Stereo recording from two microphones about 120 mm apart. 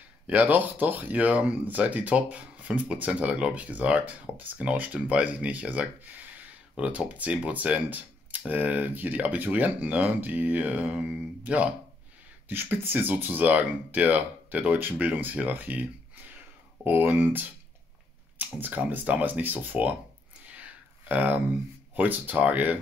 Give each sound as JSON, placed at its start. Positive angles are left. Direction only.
{"t": 0.3, "sound": "speech", "side_deg": -15}
{"t": 20.4, "sound": "a sound", "side_deg": -10}
{"t": 21.9, "sound": "speech", "side_deg": -15}